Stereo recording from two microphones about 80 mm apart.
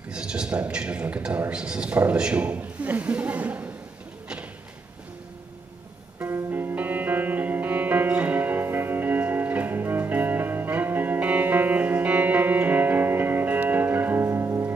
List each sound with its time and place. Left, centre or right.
0.1 s a man's voice: centre
6.2 s music: right